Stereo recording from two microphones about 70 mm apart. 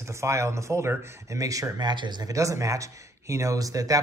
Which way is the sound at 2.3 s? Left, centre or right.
Right.